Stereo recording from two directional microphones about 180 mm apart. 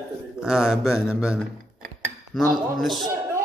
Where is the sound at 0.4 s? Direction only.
5° right (ahead or behind).